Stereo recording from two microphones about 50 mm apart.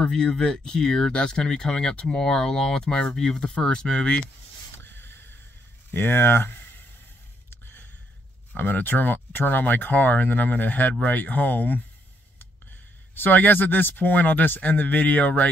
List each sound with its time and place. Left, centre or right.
0.0 s speech: centre
4.8 s a sound: left
5.9 s speech: left
7.4 s a sound: left
8.5 s speech: left
13.1 s speech: left